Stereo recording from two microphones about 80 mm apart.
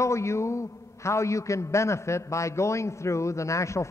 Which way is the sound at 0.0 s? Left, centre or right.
Left.